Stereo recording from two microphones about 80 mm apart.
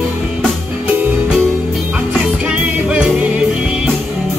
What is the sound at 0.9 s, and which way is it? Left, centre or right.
Music, right.